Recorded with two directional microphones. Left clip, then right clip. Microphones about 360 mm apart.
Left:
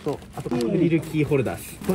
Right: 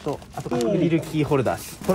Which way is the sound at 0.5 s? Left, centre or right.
Centre.